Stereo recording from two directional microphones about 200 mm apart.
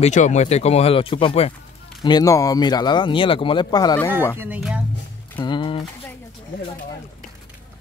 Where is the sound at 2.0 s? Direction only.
20° left (ahead or behind).